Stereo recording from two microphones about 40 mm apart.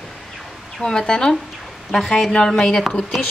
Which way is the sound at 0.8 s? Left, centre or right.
Centre.